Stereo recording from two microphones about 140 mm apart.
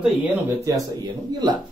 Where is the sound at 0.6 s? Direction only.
25° right (ahead or behind).